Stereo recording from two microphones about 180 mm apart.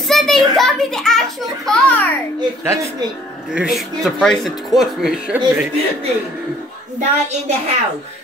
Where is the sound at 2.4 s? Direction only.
15° right (ahead or behind).